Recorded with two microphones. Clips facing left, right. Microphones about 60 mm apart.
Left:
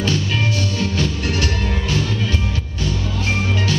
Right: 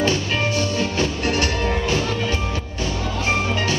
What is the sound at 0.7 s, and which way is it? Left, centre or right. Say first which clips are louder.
Music: even; right.